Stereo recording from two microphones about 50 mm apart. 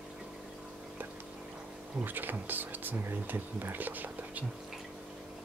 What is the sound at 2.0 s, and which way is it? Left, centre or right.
Speech, right.